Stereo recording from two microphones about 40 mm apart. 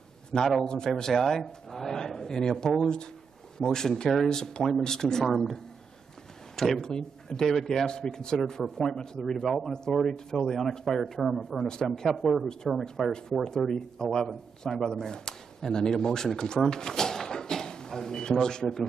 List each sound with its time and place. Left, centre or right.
0.3 s speech: centre
1.1 s speech: centre
6.8 s speech: centre
11.2 s speech: centre
11.6 s speech: centre
16.6 s a sound: centre
18.4 s speech: centre